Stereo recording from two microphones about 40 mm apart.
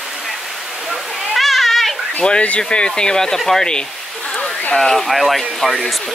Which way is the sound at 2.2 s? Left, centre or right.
Left.